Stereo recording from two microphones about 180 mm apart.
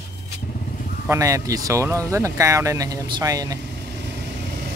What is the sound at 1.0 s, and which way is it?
Speech, 15° right (ahead or behind).